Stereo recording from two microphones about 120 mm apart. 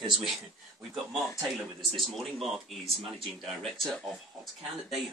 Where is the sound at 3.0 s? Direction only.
50° right (ahead or behind).